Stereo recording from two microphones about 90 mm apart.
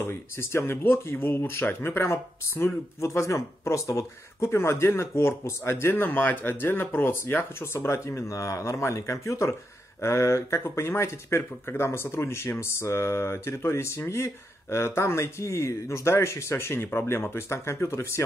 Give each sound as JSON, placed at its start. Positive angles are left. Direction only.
{"t": 0.0, "sound": "speech", "side_deg": 25}